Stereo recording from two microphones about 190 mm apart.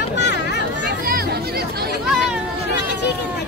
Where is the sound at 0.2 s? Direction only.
65° left (ahead or behind).